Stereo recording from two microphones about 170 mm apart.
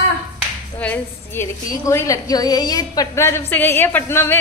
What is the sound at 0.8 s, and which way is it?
A woman's voice, 10° left (ahead or behind).